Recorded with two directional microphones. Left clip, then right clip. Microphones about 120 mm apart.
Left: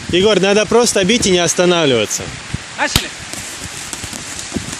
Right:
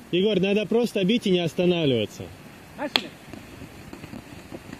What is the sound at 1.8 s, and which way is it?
Speech, 75° left (ahead or behind).